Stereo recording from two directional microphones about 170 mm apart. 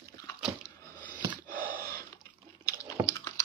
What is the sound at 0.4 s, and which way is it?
Biting, 5° right (ahead or behind).